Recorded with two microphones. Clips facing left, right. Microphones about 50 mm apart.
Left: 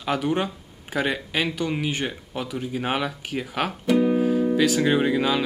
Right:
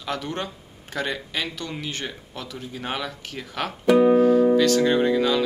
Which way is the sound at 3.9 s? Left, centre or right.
Right.